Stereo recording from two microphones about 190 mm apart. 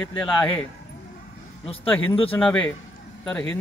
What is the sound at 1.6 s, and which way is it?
Speech, 30° left (ahead or behind).